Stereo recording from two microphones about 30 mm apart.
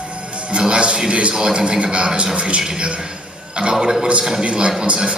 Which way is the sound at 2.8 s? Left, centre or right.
Right.